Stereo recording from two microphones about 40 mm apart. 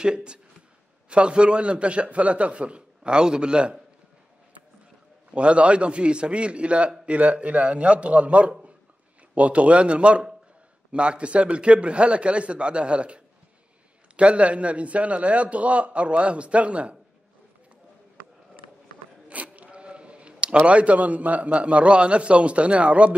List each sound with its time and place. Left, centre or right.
0.0 s a man's voice: right
5.3 s a man's voice: right
19.2 s zipper: right
20.6 s a man's voice: right